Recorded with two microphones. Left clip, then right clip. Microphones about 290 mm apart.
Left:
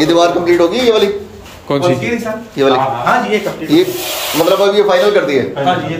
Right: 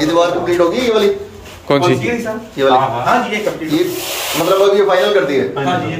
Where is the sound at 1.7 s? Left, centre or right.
Centre.